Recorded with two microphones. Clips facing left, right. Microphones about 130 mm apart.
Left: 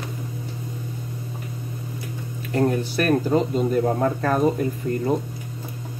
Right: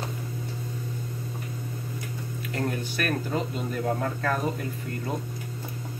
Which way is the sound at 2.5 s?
35° left (ahead or behind).